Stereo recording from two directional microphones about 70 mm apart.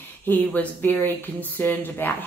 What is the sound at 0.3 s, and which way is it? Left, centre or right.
Speech, left.